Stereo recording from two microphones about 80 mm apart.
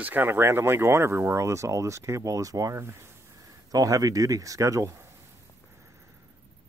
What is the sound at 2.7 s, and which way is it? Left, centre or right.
Speech, right.